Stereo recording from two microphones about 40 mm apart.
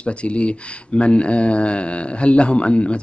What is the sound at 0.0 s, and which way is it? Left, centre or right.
Speech, left.